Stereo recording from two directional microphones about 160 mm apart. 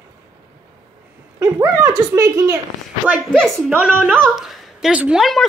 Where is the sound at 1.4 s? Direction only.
20° right (ahead or behind).